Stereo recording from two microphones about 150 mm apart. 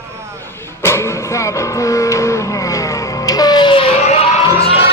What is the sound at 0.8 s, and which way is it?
Music, 15° left (ahead or behind).